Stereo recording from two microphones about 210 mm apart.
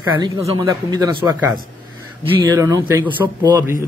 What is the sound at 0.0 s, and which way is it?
A man's voice, 15° right (ahead or behind).